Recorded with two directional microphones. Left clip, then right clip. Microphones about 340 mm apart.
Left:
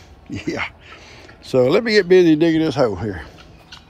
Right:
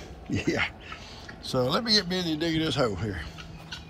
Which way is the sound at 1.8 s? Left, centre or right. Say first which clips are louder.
Left 13 dB; centre.